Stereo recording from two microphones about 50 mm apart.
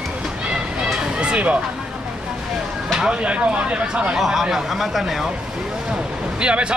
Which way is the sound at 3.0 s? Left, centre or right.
Right.